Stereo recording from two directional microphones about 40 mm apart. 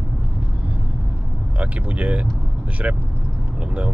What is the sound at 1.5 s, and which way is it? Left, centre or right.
Speech, right.